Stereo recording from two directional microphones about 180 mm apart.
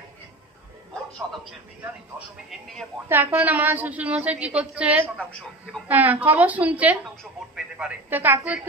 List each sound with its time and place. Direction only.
2.1 s speech: centre (ahead or behind)
3.1 s a woman's voice: 10° right (ahead or behind)